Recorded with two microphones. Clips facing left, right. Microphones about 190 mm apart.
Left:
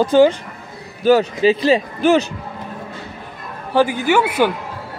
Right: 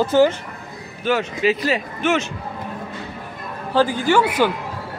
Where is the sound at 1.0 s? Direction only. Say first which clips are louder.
Left 6 dB; 35° left (ahead or behind).